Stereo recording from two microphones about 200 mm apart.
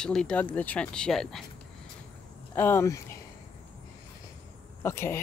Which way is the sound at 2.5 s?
10° left (ahead or behind).